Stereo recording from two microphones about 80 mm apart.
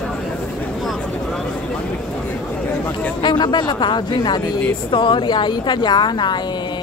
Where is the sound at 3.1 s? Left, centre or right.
Left.